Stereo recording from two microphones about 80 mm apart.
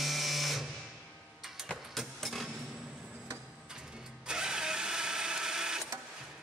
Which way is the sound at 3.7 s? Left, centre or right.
Centre.